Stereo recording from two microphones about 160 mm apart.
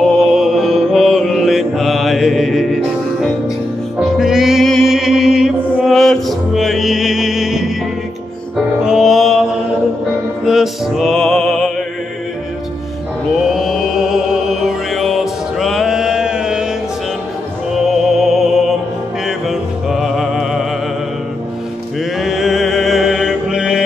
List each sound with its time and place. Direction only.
0.3 s mantra: centre (ahead or behind)
4.0 s music: centre (ahead or behind)
10.4 s music: centre (ahead or behind)
13.4 s music: centre (ahead or behind)
17.7 s music: centre (ahead or behind)
22.2 s music: centre (ahead or behind)